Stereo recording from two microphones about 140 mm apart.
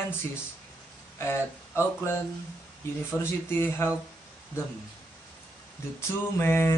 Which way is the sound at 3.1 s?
15° left (ahead or behind).